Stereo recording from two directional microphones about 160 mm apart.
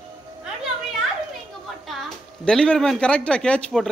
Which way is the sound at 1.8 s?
Centre (ahead or behind).